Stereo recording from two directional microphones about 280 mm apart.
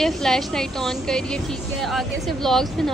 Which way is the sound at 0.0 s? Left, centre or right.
Centre.